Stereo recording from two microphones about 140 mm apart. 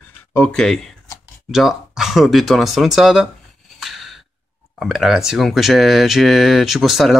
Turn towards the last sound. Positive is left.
turn(degrees=0)  # may be behind; listen again after turning